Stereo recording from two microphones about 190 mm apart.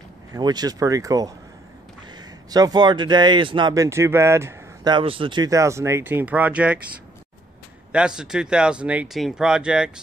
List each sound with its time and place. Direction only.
0.3 s speech: 20° right (ahead or behind)
2.5 s speech: 20° right (ahead or behind)
4.9 s speech: 25° right (ahead or behind); by 6.8 s 5° right (ahead or behind)
7.9 s speech: 5° right (ahead or behind)